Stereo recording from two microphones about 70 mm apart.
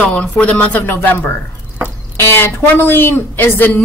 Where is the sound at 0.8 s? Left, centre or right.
Left.